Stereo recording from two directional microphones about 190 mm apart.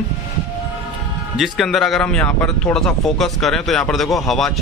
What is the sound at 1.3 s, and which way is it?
Speech, centre (ahead or behind).